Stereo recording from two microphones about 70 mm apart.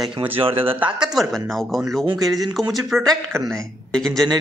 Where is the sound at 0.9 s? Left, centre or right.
Centre.